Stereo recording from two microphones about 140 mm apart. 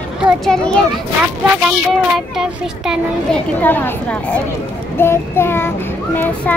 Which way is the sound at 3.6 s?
15° left (ahead or behind).